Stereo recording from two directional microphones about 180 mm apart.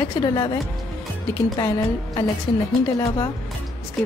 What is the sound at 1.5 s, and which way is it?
A woman's voice, 20° left (ahead or behind).